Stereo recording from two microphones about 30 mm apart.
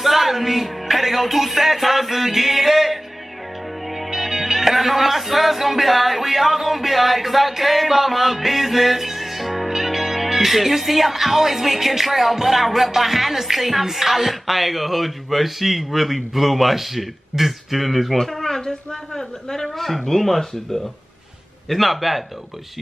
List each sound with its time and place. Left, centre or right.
0.0 s speech: centre
3.9 s music: centre
18.1 s speech: centre
18.6 s speech: left
19.8 s speech: centre
21.6 s music: centre